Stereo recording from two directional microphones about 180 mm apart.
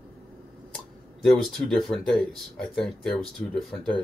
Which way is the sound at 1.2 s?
Centre (ahead or behind).